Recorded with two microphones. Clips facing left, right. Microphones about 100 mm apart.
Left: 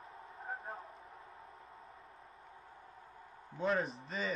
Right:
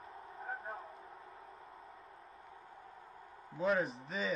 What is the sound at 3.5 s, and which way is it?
Speech, centre (ahead or behind).